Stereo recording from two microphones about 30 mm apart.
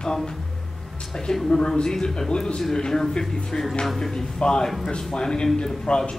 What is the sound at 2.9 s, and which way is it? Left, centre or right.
Speech, centre.